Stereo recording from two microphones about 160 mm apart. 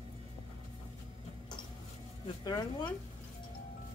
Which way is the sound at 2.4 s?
25° left (ahead or behind).